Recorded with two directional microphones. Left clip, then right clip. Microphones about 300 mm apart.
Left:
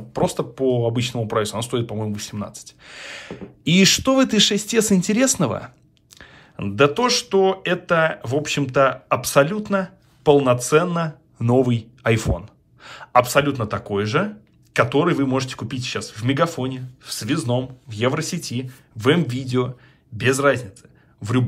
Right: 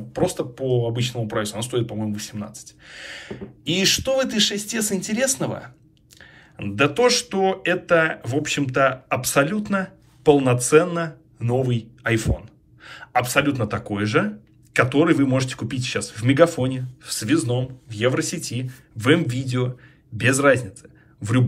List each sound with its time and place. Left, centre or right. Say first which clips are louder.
0.1 s speech: left 1 dB; centre